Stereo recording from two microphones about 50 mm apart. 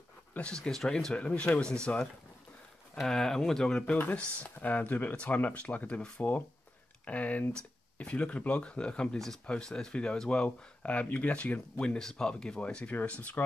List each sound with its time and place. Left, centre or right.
0.4 s speech: centre
1.1 s speech: left
3.0 s speech: centre
4.1 s speech: left
4.6 s speech: left; by 10.9 s centre
11.1 s speech: left